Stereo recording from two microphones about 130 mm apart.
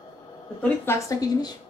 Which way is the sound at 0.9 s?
20° left (ahead or behind).